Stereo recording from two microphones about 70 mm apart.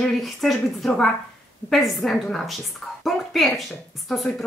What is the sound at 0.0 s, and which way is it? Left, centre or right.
A woman's voice, centre.